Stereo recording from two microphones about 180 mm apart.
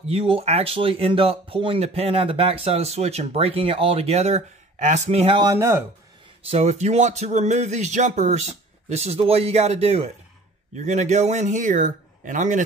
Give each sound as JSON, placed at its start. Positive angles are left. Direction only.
{"t": 0.0, "sound": "speech", "side_deg": -35}
{"t": 6.4, "sound": "speech", "side_deg": -35}